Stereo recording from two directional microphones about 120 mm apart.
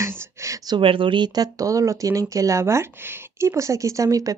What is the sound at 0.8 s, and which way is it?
Speech, 45° right (ahead or behind).